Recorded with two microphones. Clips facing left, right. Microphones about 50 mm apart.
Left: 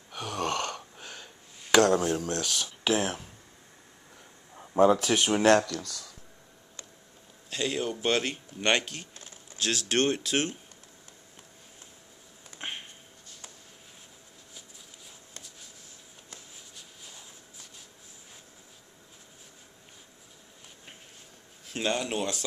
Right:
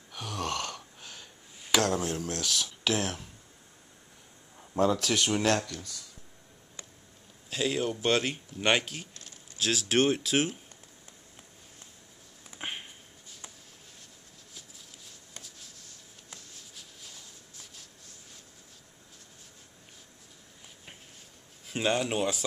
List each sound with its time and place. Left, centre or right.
0.1 s gasp: centre
1.6 s speech: centre
4.6 s a sound: left
4.9 s speech: centre
5.4 s speech: left
5.7 s speech: left
7.4 s speech: centre
9.1 s a sound: left
9.6 s speech: centre
12.4 s a sound: centre
15.3 s writing: centre
16.5 s a sound: centre
21.6 s speech: centre